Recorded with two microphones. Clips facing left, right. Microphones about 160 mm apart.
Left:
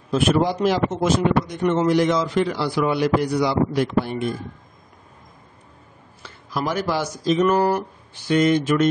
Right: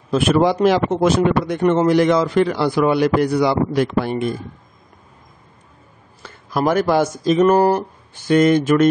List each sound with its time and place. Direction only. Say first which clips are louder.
0.1 s a man's voice: right 4 dB; 70° right (ahead or behind)
6.2 s speech: right 7 dB; 50° right (ahead or behind)